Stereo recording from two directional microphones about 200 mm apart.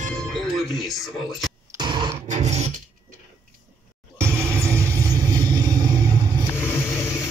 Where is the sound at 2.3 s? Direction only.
35° right (ahead or behind).